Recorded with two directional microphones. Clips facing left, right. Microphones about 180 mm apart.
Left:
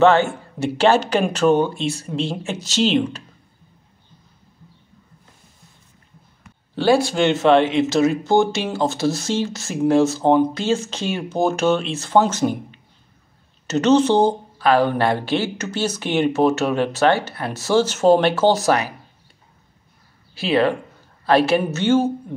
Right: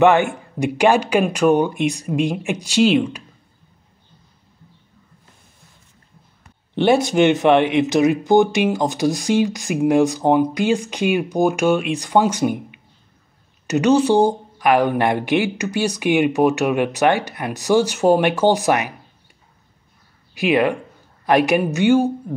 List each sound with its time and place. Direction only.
0.0 s speech: 15° right (ahead or behind)
6.7 s speech: 20° right (ahead or behind)
20.3 s speech: 15° right (ahead or behind)